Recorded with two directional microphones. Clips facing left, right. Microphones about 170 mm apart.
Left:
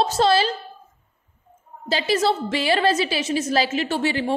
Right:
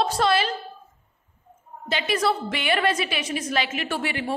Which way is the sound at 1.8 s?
30° left (ahead or behind).